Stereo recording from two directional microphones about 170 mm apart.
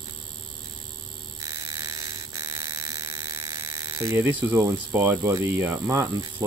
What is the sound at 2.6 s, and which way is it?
Mechanisms, 20° right (ahead or behind).